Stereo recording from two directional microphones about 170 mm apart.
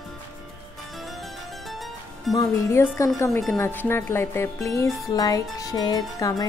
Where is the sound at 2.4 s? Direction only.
15° left (ahead or behind).